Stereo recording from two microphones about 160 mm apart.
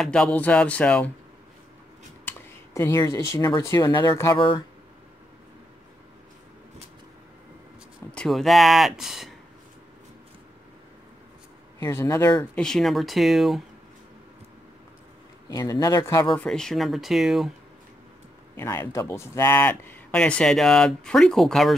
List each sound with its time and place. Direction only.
0.0 s speech: 5° left (ahead or behind)
2.2 s speech: 15° left (ahead or behind)
8.1 s speech: 5° left (ahead or behind)
11.8 s speech: 15° left (ahead or behind)
12.5 s speech: 5° left (ahead or behind)
15.5 s speech: 20° left (ahead or behind)
16.3 s speech: 5° left (ahead or behind)
18.6 s speech: 15° left (ahead or behind); by 21.7 s centre (ahead or behind)